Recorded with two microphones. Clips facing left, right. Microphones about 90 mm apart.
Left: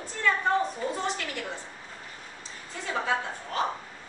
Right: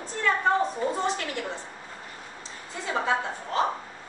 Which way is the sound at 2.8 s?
25° right (ahead or behind).